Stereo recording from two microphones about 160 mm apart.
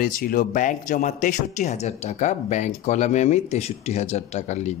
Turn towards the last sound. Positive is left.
turn(degrees=45)  # may be behind; listen again after turning